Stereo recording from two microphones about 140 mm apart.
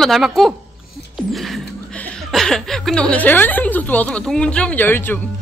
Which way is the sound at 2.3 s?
5° left (ahead or behind).